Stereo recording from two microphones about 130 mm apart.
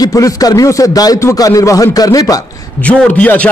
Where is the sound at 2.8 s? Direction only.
10° left (ahead or behind).